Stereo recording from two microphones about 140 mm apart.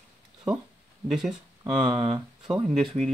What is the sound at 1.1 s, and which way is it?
Speech, 5° right (ahead or behind).